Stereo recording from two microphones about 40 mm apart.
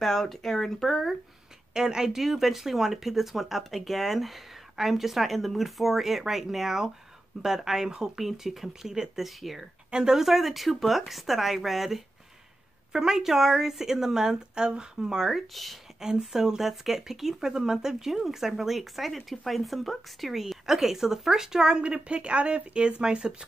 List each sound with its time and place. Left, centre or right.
0.0 s speech: centre
1.7 s speech: centre
8.9 s speech: centre
9.2 s speech: centre
9.8 s speech: right
10.1 s speech: centre
15.3 s speech: centre
16.0 s speech: centre